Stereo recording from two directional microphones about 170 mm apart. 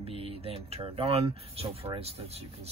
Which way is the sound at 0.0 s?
35° right (ahead or behind).